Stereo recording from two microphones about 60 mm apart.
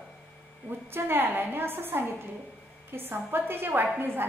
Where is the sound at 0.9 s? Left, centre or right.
Right.